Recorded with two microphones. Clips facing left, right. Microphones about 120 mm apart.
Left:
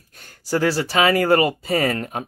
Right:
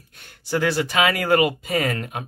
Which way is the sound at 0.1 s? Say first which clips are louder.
Left 2 dB; 40° left (ahead or behind).